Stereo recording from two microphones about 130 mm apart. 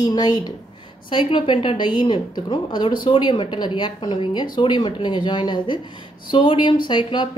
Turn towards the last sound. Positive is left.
turn(degrees=35)  # may be behind; listen again after turning